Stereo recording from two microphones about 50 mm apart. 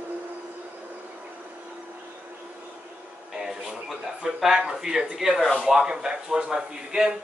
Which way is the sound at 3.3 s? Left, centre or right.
Centre.